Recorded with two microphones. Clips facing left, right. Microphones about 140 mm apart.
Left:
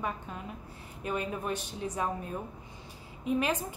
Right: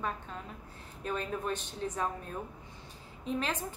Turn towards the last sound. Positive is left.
turn(degrees=10)  # may be behind; listen again after turning